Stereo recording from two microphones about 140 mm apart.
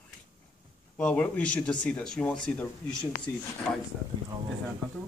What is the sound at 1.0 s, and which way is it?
Speech, 10° left (ahead or behind).